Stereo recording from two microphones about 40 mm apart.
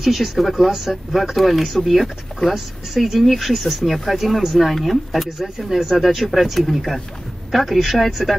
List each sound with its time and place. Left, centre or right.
0.0 s speech: centre
2.5 s speech: centre